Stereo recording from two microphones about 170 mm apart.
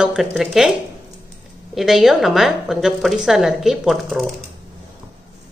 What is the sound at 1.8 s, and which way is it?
A woman's voice, centre (ahead or behind).